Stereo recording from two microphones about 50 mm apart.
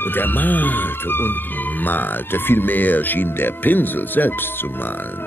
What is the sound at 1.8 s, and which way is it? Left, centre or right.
Music, left.